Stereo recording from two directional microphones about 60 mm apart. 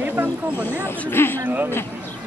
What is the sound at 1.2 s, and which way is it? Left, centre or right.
Speech, left.